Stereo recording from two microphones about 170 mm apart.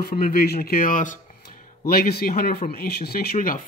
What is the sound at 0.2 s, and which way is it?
Speech, 60° left (ahead or behind).